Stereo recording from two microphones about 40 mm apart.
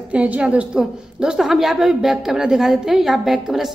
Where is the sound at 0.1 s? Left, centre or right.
Right.